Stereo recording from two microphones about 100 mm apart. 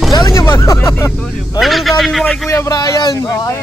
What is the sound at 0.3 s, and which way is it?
Speech, 30° left (ahead or behind).